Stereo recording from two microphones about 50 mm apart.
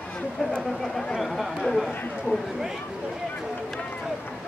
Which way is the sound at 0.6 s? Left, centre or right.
Centre.